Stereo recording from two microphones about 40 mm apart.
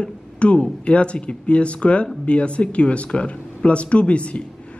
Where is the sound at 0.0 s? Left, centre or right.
Left.